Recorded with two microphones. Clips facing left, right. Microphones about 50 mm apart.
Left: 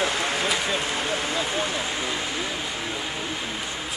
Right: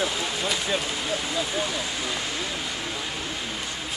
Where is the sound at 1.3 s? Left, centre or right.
Left.